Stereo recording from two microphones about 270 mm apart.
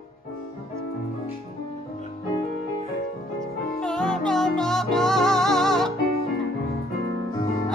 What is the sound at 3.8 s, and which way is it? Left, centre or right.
Music, centre.